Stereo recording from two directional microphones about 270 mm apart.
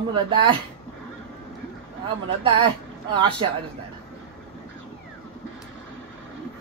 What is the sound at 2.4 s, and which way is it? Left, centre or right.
Speech, centre.